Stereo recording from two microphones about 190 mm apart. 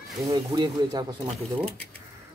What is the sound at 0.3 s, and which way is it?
Speech, 25° right (ahead or behind).